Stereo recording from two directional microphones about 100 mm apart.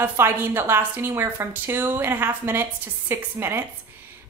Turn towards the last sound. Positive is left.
turn(degrees=-25)  # may be behind; listen again after turning